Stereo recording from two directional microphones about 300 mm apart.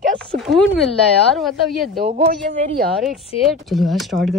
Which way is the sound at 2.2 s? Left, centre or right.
Right.